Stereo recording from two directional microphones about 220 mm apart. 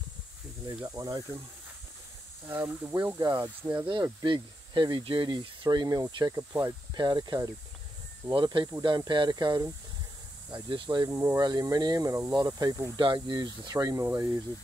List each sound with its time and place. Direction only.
0.8 s speech: 15° right (ahead or behind)
2.4 s speech: 10° right (ahead or behind)